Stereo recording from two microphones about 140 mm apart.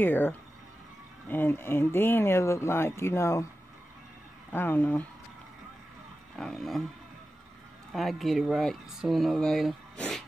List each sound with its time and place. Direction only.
0.0 s speech: 15° left (ahead or behind)
4.5 s speech: 15° left (ahead or behind)
6.3 s speech: 5° left (ahead or behind)
7.9 s speech: centre (ahead or behind)